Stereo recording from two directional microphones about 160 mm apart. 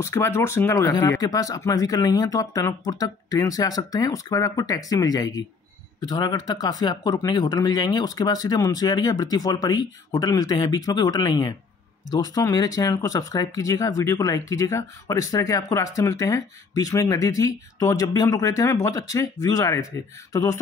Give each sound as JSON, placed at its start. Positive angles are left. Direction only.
{"t": 0.0, "sound": "speech", "side_deg": 15}